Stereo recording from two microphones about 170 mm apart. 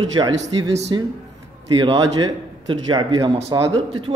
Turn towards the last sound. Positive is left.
turn(degrees=-30)  # may be behind; listen again after turning